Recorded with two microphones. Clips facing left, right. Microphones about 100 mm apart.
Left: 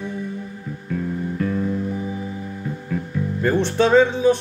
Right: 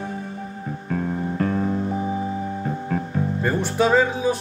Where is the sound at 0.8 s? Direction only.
50° right (ahead or behind).